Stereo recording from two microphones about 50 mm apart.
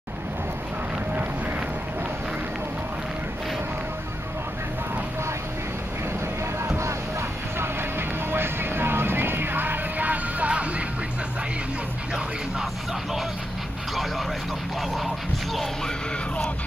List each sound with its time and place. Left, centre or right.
6.8 s music: right
8.3 s music: right